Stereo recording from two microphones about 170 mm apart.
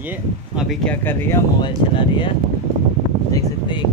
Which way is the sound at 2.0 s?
30° left (ahead or behind).